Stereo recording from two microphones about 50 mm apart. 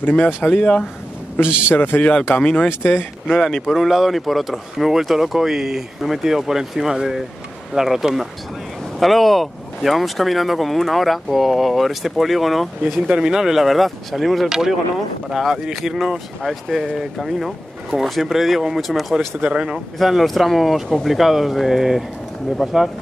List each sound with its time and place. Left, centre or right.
0.0 s speech: left
1.8 s speech: left
2.4 s speech: left
2.8 s speech: left
3.3 s speech: centre
13.0 s speech: centre
19.1 s speech: centre
20.0 s speech: centre